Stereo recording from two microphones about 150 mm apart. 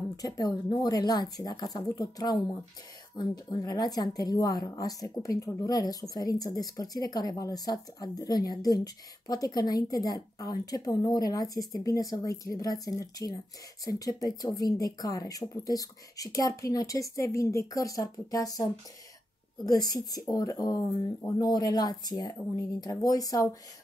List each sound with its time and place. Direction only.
0.1 s a woman's voice: 25° left (ahead or behind)